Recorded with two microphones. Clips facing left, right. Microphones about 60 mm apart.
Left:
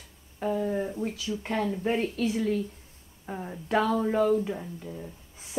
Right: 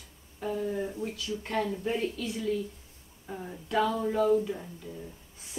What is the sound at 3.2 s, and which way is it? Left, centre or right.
A woman's voice, left.